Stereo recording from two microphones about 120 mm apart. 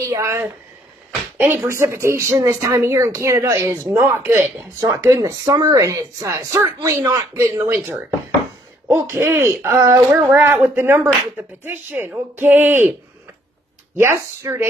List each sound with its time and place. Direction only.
0.0 s speech: 25° right (ahead or behind)
4.3 s speech: 15° right (ahead or behind)
4.7 s speech: 25° right (ahead or behind)
13.9 s speech: 20° right (ahead or behind)